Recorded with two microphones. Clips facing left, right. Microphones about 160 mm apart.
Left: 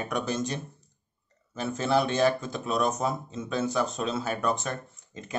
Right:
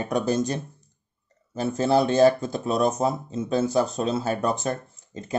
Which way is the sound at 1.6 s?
35° right (ahead or behind).